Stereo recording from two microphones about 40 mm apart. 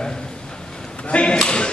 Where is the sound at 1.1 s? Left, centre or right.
Left.